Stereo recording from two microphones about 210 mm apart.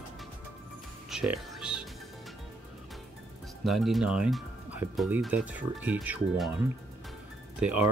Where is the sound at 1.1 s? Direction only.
5° right (ahead or behind).